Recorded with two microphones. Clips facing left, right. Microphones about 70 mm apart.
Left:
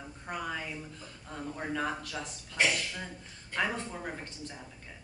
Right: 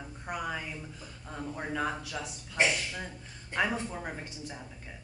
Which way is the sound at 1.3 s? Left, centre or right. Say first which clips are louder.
Even; centre.